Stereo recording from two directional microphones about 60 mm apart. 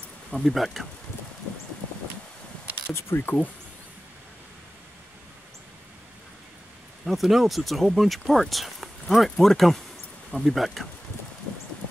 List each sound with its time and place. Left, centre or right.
0.3 s speech: centre
2.9 s a sound: left
7.1 s speech: centre